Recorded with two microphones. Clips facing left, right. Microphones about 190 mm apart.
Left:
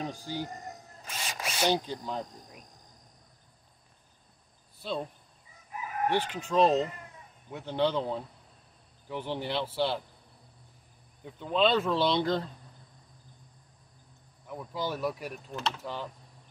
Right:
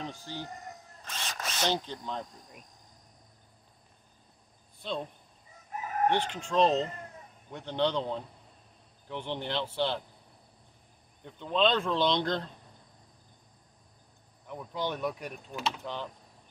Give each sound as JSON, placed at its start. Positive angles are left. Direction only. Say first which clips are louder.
{"t": 0.0, "sound": "speech", "louder": "left 4 dB", "side_deg": 15}
{"t": 4.8, "sound": "speech", "louder": "left 1 dB", "side_deg": 5}
{"t": 5.7, "sound": "crowing", "louder": "right 1 dB", "side_deg": -45}
{"t": 6.0, "sound": "speech", "louder": "even", "side_deg": 5}
{"t": 11.2, "sound": "speech", "louder": "left 1 dB", "side_deg": 5}
{"t": 14.4, "sound": "speech", "louder": "even", "side_deg": 5}